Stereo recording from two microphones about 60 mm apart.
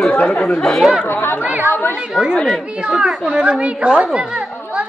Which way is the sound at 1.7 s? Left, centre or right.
Left.